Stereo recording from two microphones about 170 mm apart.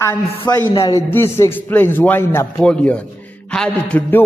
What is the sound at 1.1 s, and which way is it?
A man's voice, 15° left (ahead or behind).